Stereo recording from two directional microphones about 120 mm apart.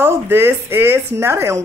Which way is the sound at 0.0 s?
20° right (ahead or behind).